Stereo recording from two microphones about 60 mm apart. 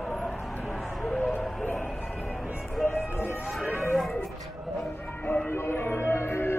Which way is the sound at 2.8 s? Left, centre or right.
Left.